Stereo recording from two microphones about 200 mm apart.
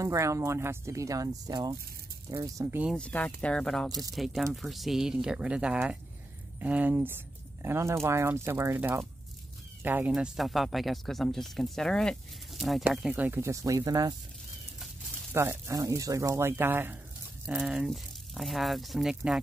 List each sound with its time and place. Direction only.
0.0 s speech: 15° right (ahead or behind)
2.9 s speech: 5° left (ahead or behind); by 14.1 s 20° right (ahead or behind)
15.3 s speech: 15° right (ahead or behind)